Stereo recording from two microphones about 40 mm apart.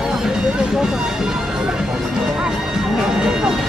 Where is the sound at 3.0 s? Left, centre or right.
Centre.